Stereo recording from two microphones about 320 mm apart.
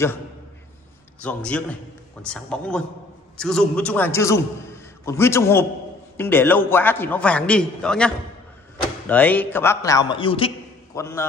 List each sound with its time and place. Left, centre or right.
1.2 s a man's voice: centre